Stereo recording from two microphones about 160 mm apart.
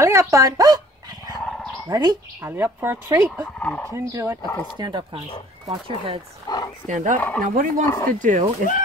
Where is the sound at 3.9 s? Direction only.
20° right (ahead or behind).